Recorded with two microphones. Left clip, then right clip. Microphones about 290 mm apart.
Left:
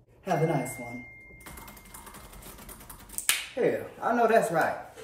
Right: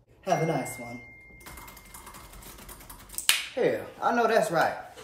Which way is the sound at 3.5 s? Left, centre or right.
Centre.